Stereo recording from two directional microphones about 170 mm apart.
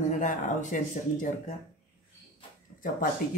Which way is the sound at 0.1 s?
45° left (ahead or behind).